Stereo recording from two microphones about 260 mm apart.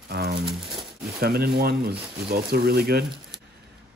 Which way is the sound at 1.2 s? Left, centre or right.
Right.